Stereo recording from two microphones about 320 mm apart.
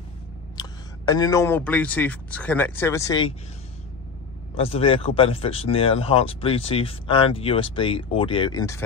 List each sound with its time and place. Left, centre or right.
0.6 s speech: centre
4.6 s speech: centre